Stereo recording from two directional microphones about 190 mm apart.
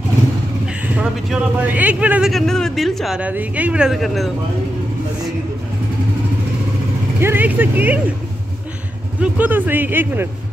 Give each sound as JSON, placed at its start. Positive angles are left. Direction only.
{"t": 0.8, "sound": "speech", "side_deg": -5}
{"t": 7.2, "sound": "speech", "side_deg": -10}
{"t": 9.2, "sound": "speech", "side_deg": -10}